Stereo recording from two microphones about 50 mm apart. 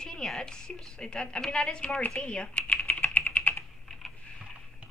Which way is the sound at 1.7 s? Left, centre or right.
Left.